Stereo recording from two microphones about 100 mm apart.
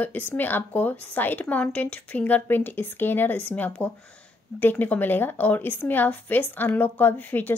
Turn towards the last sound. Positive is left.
turn(degrees=15)  # may be behind; listen again after turning